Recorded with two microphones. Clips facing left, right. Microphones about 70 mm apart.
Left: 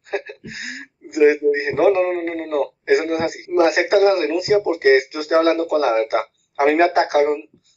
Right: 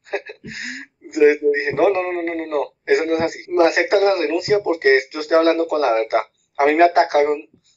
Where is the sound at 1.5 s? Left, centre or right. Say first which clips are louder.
Left 1 dB; right.